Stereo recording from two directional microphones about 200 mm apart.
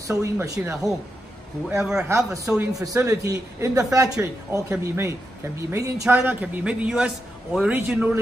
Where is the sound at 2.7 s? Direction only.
15° right (ahead or behind).